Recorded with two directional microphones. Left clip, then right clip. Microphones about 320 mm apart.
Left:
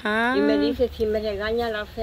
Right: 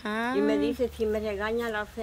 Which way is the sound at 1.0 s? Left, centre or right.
Right.